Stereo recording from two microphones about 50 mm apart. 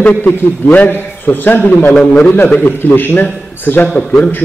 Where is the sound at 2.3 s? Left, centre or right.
Left.